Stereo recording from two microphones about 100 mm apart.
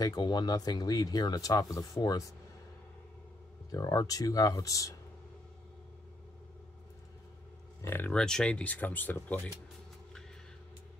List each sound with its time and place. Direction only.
0.0 s speech: 40° left (ahead or behind)
3.7 s speech: 35° left (ahead or behind)
7.8 s speech: 25° left (ahead or behind)
8.1 s speech: 10° left (ahead or behind)